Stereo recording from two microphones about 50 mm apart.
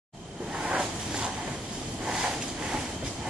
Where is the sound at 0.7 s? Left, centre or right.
Centre.